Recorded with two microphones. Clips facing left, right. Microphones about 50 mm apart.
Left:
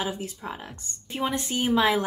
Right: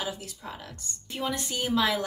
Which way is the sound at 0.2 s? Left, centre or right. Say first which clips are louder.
Left 5 dB; left.